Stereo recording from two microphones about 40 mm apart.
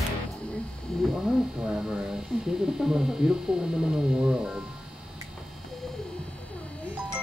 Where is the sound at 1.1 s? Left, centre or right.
Centre.